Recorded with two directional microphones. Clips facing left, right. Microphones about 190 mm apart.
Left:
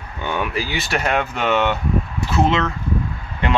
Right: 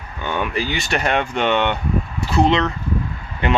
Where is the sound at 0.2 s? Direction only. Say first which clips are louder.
Right 1 dB; 10° left (ahead or behind).